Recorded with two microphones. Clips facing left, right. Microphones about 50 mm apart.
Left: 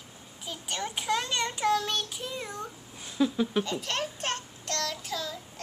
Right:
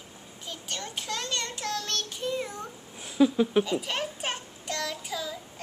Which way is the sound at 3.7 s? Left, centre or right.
Centre.